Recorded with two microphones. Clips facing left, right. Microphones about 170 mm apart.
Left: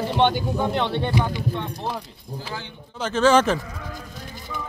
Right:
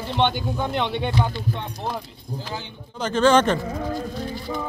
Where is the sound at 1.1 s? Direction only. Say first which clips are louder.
Left 1 dB; 15° left (ahead or behind).